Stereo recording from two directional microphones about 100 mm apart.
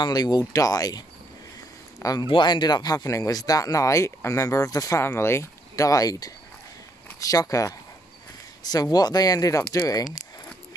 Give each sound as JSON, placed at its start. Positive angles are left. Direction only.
{"t": 0.0, "sound": "speech", "side_deg": 45}
{"t": 2.0, "sound": "a sound", "side_deg": 35}
{"t": 2.2, "sound": "speech", "side_deg": 50}
{"t": 8.9, "sound": "speech", "side_deg": 40}